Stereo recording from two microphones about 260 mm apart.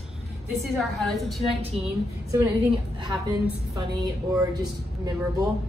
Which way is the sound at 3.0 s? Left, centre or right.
Centre.